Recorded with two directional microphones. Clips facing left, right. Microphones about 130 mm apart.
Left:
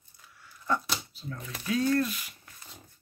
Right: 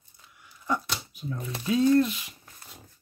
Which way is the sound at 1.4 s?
25° right (ahead or behind).